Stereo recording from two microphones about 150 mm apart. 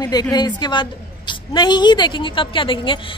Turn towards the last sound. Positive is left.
turn(degrees=35)  # may be behind; listen again after turning